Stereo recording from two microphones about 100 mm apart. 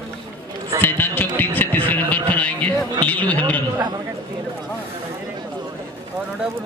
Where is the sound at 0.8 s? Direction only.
20° left (ahead or behind).